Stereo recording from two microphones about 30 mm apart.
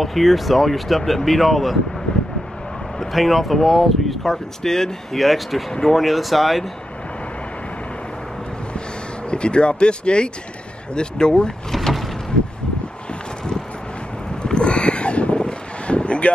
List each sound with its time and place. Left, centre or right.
0.0 s speech: centre
3.0 s speech: centre
5.1 s speech: centre
5.7 s speech: left
5.9 s speech: centre
9.3 s speech: left
11.7 s vehicle: centre
14.4 s boat: left
15.3 s wind: left